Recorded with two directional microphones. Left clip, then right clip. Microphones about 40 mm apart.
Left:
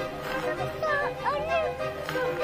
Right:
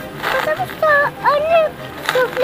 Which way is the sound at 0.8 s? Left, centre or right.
Centre.